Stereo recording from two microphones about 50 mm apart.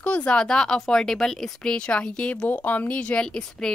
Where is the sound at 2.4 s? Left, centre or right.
Left; by 3.7 s centre.